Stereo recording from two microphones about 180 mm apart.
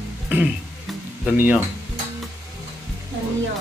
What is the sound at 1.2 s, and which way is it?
Speech, 10° right (ahead or behind).